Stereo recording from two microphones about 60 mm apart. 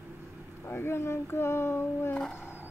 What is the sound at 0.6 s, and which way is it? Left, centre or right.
Speech, left.